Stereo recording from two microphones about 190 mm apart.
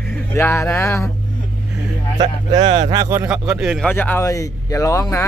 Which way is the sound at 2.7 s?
20° right (ahead or behind).